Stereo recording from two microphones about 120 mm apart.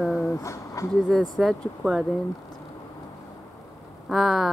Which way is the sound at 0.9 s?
Centre (ahead or behind).